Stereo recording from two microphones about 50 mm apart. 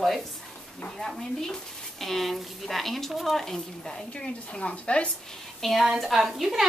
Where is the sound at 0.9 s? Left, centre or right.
Centre.